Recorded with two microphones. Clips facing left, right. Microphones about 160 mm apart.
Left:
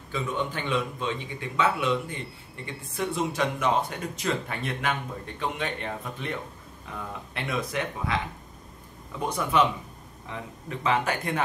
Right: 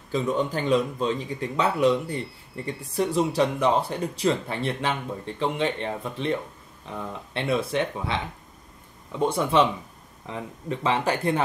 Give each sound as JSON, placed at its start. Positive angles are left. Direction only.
{"t": 0.1, "sound": "speech", "side_deg": -40}
{"t": 9.2, "sound": "speech", "side_deg": -30}
{"t": 10.8, "sound": "speech", "side_deg": -30}